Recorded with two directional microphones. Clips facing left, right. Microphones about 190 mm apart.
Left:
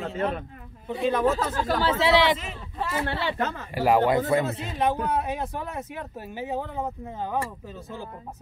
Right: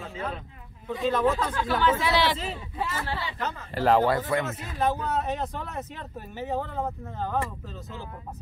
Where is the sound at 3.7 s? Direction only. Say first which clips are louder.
Left 1 dB; 10° left (ahead or behind).